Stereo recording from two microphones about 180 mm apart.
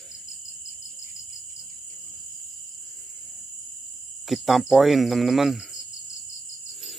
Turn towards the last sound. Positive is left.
turn(degrees=0)  # may be behind; listen again after turning